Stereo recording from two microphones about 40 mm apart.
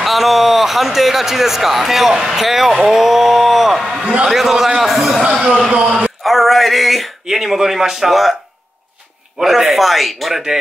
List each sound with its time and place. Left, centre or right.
0.0 s speech: centre
5.2 s speech: right
6.2 s a sound: centre
7.2 s speech: centre
9.4 s speech: centre